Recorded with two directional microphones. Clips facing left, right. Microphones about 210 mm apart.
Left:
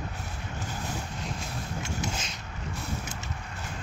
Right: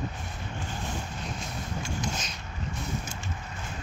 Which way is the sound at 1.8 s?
25° left (ahead or behind).